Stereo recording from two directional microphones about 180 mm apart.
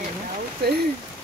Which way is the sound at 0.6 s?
60° right (ahead or behind).